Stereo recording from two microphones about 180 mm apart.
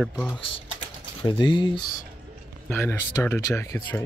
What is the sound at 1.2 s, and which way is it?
Speech, 25° left (ahead or behind).